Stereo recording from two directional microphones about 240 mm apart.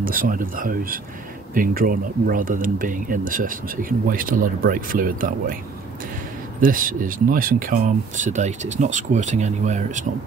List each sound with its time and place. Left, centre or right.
0.0 s speech: right
6.6 s speech: right